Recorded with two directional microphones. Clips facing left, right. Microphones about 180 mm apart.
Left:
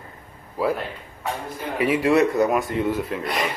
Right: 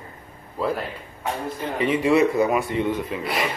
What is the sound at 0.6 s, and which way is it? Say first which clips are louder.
Speech: left 2 dB; 10° left (ahead or behind).